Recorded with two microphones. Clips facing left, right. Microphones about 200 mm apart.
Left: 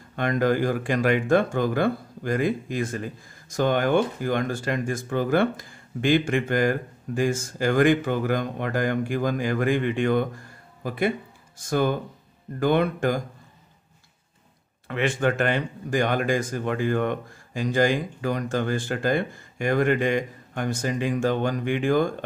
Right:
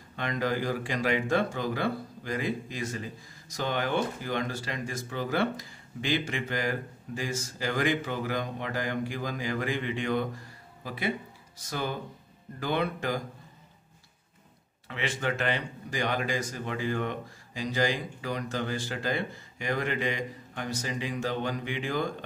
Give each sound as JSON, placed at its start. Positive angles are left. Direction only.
{"t": 0.1, "sound": "speech", "side_deg": 50}
{"t": 14.9, "sound": "speech", "side_deg": 50}